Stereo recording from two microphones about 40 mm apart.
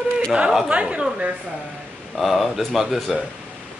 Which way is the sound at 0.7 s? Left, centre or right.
Right.